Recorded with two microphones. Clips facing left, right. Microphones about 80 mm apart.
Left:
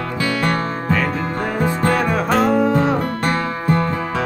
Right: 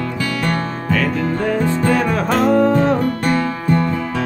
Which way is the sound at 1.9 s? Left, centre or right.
Centre.